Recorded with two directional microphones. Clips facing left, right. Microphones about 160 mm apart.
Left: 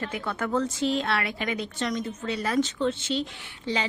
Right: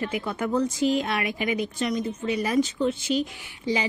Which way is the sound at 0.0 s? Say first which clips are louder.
Right 3 dB; 15° right (ahead or behind).